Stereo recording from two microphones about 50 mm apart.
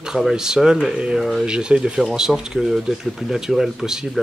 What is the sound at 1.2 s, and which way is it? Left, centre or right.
Speech, centre.